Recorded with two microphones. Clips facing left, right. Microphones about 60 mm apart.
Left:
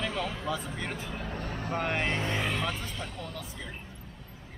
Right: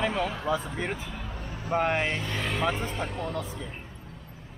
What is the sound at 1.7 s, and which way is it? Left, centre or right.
Speech, centre.